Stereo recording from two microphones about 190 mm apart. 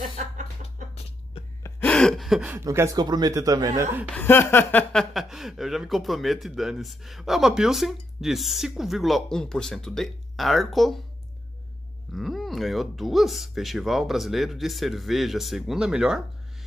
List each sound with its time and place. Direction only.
1.6 s gasp: 10° left (ahead or behind)
2.5 s speech: 15° right (ahead or behind)
4.1 s speech: 10° left (ahead or behind)
12.1 s speech: centre (ahead or behind)